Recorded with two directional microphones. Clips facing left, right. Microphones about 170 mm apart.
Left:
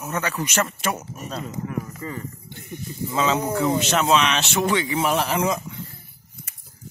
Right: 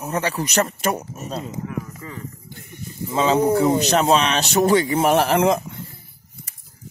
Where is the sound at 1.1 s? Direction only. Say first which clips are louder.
Right 2 dB; 25° right (ahead or behind).